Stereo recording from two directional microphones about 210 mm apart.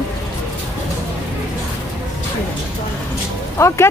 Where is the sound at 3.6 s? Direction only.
10° left (ahead or behind).